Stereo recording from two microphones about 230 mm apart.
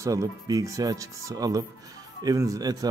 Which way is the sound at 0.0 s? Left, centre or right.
Centre.